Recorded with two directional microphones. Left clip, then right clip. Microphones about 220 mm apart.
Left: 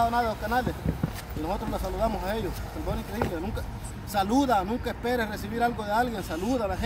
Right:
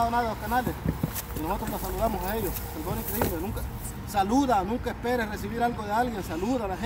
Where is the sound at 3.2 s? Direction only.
30° right (ahead or behind).